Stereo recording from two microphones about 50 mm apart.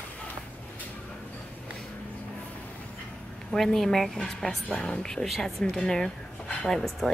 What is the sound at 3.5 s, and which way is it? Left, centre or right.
A woman's voice, centre.